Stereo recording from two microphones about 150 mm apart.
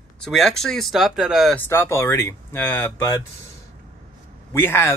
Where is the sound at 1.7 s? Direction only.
15° left (ahead or behind).